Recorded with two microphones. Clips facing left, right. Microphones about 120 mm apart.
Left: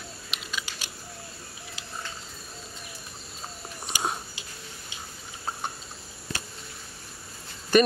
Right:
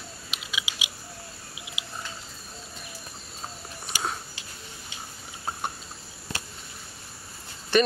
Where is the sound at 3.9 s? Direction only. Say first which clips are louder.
Left 1 dB; 15° left (ahead or behind).